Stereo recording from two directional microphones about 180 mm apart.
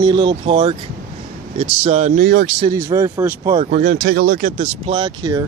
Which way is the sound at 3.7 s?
45° right (ahead or behind).